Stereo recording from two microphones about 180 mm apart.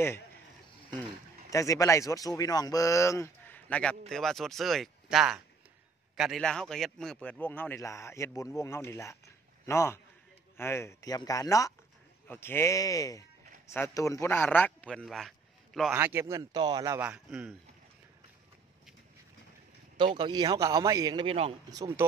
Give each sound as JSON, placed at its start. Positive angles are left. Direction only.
{"t": 1.5, "sound": "a man's voice", "side_deg": 15}
{"t": 15.9, "sound": "speech", "side_deg": -15}
{"t": 17.1, "sound": "speech", "side_deg": -5}
{"t": 20.0, "sound": "a man's voice", "side_deg": -25}
{"t": 21.6, "sound": "a man's voice", "side_deg": -20}